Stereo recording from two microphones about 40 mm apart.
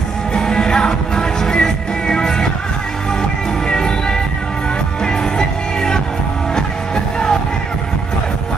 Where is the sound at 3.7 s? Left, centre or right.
Centre.